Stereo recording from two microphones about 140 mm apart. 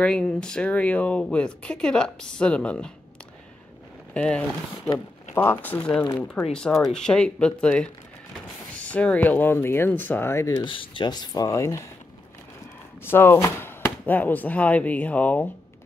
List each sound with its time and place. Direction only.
0.0 s speech: 5° left (ahead or behind)
4.1 s speech: 10° left (ahead or behind)
10.6 s speech: 35° left (ahead or behind)
13.0 s speech: 15° left (ahead or behind)